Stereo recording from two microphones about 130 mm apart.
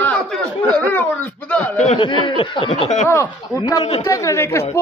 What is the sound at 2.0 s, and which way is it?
Speech, 40° left (ahead or behind).